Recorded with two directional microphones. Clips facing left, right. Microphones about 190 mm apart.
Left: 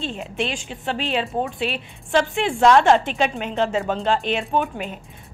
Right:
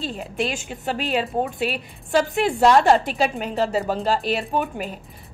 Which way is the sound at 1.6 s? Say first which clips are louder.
Even; 10° right (ahead or behind).